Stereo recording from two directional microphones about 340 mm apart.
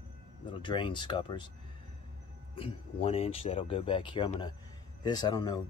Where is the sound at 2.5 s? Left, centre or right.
Centre.